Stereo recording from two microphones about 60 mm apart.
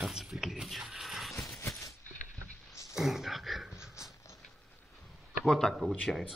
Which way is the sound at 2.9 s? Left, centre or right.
Centre.